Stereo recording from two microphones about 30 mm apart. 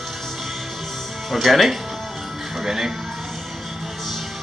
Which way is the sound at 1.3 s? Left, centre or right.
Centre.